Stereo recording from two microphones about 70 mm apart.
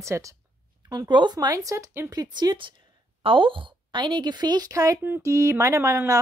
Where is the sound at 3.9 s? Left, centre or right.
Right.